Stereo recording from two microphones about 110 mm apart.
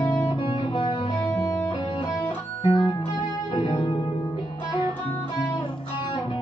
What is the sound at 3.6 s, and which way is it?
Music, 45° left (ahead or behind).